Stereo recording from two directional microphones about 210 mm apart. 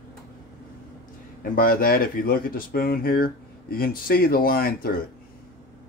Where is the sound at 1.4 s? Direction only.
45° left (ahead or behind).